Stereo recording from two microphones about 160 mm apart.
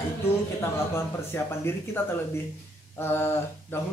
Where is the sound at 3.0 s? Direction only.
15° left (ahead or behind).